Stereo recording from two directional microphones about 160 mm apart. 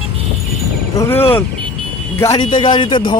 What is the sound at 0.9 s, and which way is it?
Speech, 20° left (ahead or behind).